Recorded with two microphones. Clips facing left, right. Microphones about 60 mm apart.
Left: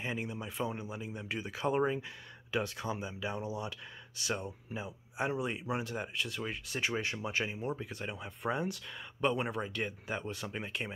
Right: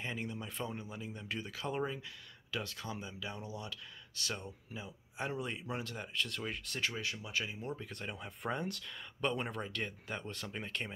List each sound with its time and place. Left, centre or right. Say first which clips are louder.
0.0 s speech: left 3 dB; centre; by 7.6 s left
7.6 s speech: left 5 dB; centre
7.9 s speech: left 3 dB; centre